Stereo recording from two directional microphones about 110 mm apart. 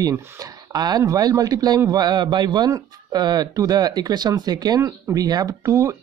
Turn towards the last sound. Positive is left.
turn(degrees=-30)  # may be behind; listen again after turning